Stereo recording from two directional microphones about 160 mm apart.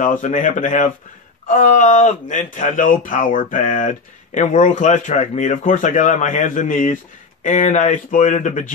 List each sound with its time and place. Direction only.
0.0 s speech: 50° left (ahead or behind)